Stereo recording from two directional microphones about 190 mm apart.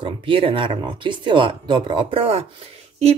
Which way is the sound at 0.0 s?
30° right (ahead or behind).